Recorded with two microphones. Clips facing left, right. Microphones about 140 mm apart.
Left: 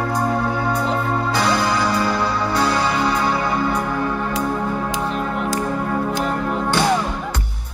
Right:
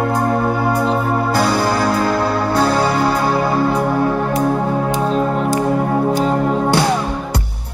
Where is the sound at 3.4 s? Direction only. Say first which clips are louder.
Right 5 dB; 35° right (ahead or behind).